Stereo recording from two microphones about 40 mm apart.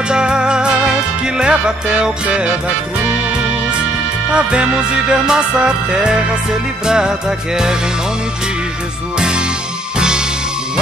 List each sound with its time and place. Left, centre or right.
0.1 s music: right
4.3 s music: right
9.9 s music: right